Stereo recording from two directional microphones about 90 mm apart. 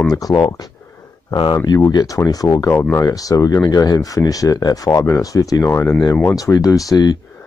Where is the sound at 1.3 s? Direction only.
55° left (ahead or behind).